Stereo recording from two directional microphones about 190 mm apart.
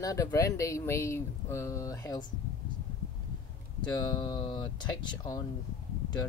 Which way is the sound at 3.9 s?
25° left (ahead or behind).